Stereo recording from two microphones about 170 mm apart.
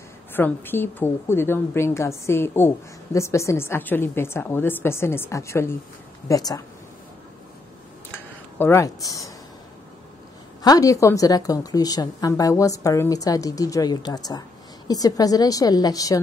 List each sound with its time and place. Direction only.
0.3 s a woman's voice: 10° left (ahead or behind)
8.5 s a woman's voice: 15° left (ahead or behind)
10.6 s a woman's voice: 20° left (ahead or behind)